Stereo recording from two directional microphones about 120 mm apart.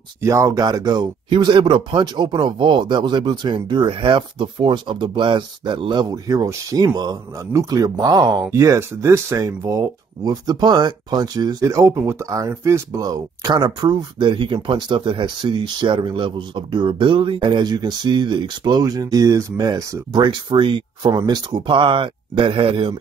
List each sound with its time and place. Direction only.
0.2 s speech: 25° right (ahead or behind)
8.5 s speech: 25° right (ahead or behind); by 20.8 s 45° right (ahead or behind)
21.0 s speech: 30° right (ahead or behind); by 22.9 s 50° right (ahead or behind)